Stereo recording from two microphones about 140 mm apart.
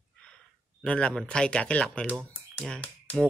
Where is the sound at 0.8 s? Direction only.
5° left (ahead or behind).